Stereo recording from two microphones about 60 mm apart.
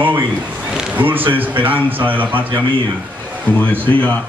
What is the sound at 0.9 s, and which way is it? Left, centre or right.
A man's voice, right.